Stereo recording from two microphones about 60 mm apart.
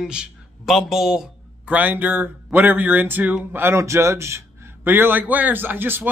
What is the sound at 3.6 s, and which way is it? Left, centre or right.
Speech, right.